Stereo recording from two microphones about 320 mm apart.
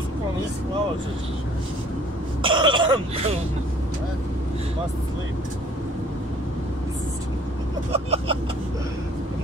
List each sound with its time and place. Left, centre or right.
2.4 s speech: centre
7.9 s speech: centre